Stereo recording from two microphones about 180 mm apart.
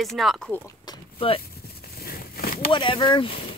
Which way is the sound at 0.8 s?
30° left (ahead or behind).